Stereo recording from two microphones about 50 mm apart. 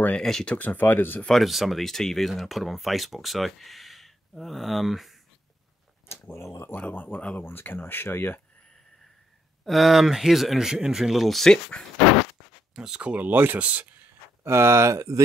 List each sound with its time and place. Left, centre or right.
0.2 s speech: centre
0.5 s speech: left
1.3 s speech: centre
6.3 s speech: left
6.7 s speech: left
9.7 s speech: centre
11.2 s speech: centre
12.0 s a sound: centre
12.7 s speech: centre
13.3 s speech: right
14.4 s speech: right